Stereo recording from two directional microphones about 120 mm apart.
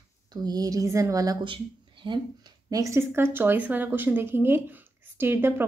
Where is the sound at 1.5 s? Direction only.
40° right (ahead or behind).